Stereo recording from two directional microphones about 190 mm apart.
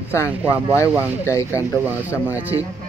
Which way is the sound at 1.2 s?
15° left (ahead or behind).